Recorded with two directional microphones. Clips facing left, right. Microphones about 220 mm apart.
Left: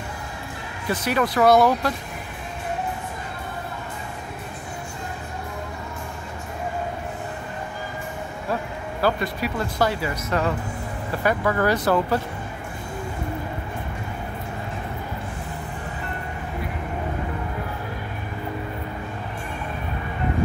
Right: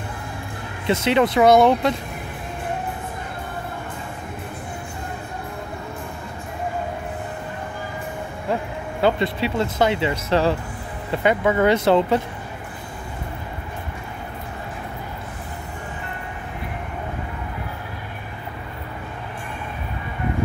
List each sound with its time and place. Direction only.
0.8 s speech: 25° right (ahead or behind)
9.0 s speech: 25° right (ahead or behind)